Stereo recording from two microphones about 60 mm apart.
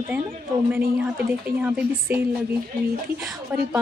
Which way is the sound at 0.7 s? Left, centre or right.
Right.